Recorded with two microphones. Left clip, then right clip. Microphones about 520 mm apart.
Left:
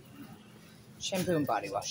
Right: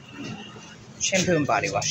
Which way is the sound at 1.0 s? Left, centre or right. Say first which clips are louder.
Right 9 dB; left.